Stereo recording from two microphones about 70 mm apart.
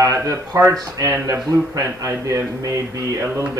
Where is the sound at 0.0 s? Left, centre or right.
Right.